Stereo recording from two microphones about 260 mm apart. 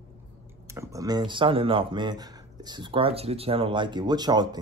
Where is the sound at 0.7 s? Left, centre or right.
Centre.